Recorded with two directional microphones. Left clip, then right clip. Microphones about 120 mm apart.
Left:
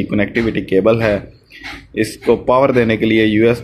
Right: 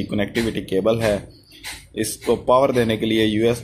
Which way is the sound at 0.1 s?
25° right (ahead or behind).